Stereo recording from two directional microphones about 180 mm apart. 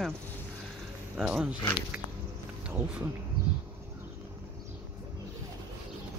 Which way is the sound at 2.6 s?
10° right (ahead or behind).